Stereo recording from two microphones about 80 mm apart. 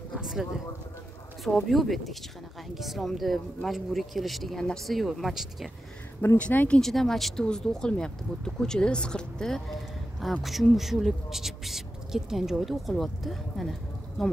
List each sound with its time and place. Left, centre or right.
0.2 s a sound: centre
1.4 s speech: centre
6.2 s speech: centre
6.8 s speech: centre